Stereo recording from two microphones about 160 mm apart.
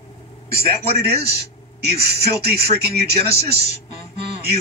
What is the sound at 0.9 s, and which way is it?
A man's voice, 90° right.